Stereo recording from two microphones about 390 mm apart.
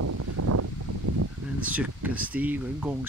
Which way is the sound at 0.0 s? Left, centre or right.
Right.